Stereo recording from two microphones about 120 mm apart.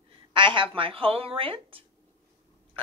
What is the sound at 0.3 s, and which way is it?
A woman's voice, 45° right (ahead or behind).